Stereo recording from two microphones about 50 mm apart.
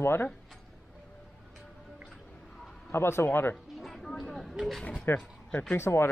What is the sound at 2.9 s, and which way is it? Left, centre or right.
Speech, left.